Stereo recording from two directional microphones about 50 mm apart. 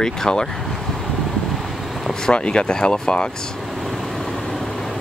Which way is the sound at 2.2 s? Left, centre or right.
Centre.